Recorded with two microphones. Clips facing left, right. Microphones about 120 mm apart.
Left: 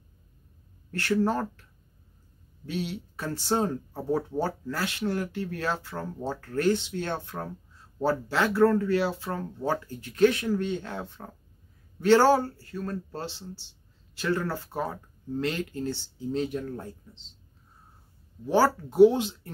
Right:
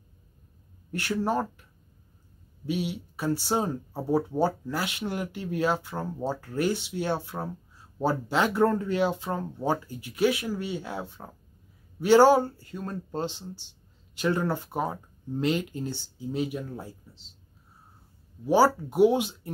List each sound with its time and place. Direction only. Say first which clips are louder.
0.9 s speech: left 1 dB; 15° right (ahead or behind)
2.6 s speech: right 2 dB; 15° right (ahead or behind)
18.4 s speech: right 2 dB; 15° right (ahead or behind)